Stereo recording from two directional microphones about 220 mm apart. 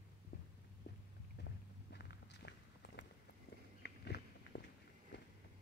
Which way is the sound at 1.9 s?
45° left (ahead or behind).